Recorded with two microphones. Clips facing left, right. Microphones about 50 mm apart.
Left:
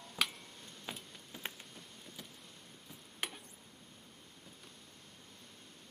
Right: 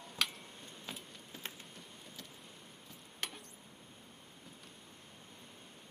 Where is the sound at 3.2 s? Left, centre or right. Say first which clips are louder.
Left 1 dB; centre.